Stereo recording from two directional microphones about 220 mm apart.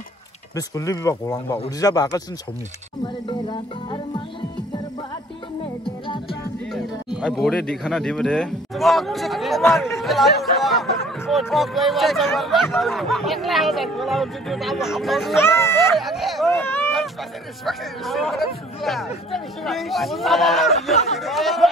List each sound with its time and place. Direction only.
0.6 s speech: 15° left (ahead or behind)
3.3 s speech: 20° left (ahead or behind)
6.0 s music: 20° left (ahead or behind)
6.7 s a man's voice: centre (ahead or behind)
15.3 s speech: 10° left (ahead or behind)
16.0 s speech: centre (ahead or behind)
17.6 s a man's voice: centre (ahead or behind)